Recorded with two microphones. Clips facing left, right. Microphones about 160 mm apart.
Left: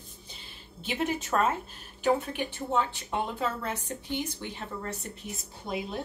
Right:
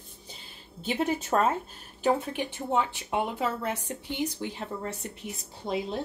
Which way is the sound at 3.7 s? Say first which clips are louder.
Even; 30° right (ahead or behind).